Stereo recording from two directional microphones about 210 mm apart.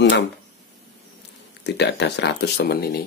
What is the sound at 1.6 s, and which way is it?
Speech, 55° left (ahead or behind).